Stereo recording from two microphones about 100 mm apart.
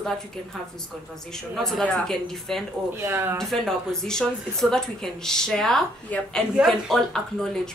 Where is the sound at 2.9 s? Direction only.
25° right (ahead or behind).